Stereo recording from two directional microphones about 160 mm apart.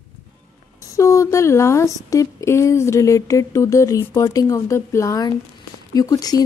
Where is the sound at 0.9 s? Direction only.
20° left (ahead or behind).